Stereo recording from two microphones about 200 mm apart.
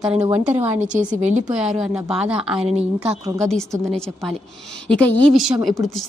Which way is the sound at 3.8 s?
5° left (ahead or behind).